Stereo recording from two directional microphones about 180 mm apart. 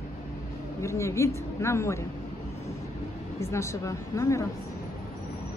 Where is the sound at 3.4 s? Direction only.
15° left (ahead or behind).